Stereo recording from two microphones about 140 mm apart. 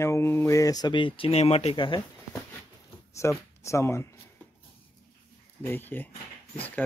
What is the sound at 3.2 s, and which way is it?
Speech, 20° left (ahead or behind).